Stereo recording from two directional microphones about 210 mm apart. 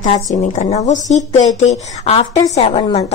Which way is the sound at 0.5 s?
30° left (ahead or behind).